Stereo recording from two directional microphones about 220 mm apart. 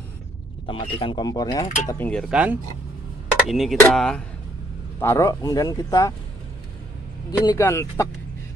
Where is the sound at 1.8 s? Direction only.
5° left (ahead or behind).